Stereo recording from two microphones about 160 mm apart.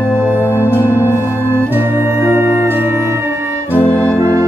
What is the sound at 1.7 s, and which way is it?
Music, 15° right (ahead or behind).